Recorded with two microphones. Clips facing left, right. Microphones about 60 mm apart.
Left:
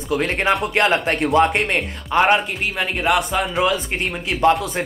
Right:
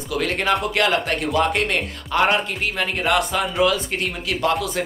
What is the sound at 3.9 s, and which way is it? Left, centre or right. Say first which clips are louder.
Speech: left 2 dB; left.